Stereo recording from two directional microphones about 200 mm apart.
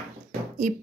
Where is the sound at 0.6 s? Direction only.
40° right (ahead or behind).